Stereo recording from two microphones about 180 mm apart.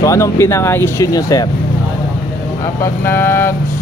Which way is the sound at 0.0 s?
15° left (ahead or behind).